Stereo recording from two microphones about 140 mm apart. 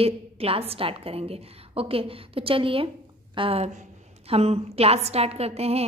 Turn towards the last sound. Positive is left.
turn(degrees=-45)  # may be behind; listen again after turning